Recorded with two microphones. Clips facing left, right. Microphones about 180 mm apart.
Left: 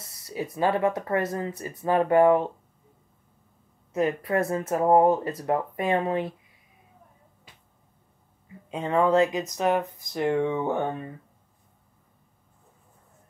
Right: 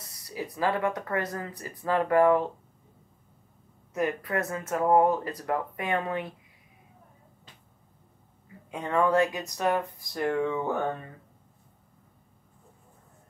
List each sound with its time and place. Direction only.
0.0 s music: 25° left (ahead or behind)
0.6 s speech: 25° left (ahead or behind)
3.9 s speech: 25° left (ahead or behind)
8.6 s speech: 25° left (ahead or behind)